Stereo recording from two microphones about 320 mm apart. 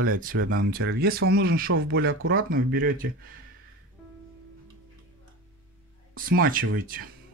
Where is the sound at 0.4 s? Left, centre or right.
Right.